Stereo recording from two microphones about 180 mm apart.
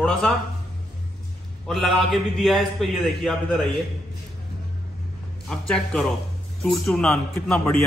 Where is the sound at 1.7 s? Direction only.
Centre (ahead or behind).